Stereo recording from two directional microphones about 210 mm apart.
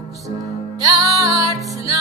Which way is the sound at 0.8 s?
15° right (ahead or behind).